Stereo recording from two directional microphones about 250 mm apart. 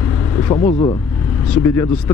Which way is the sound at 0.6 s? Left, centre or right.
Left.